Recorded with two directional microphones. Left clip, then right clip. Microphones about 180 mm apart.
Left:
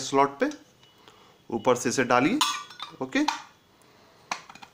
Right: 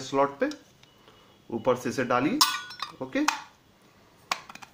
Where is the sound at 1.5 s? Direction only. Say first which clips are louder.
Left 3 dB; 25° left (ahead or behind).